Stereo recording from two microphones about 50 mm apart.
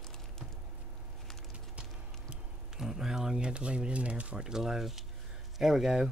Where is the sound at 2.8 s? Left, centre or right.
Centre.